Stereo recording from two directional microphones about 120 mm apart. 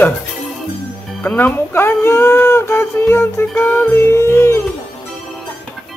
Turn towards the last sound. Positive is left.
turn(degrees=20)  # may be behind; listen again after turning